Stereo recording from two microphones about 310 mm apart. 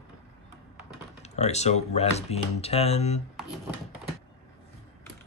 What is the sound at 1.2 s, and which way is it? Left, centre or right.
Speech, left.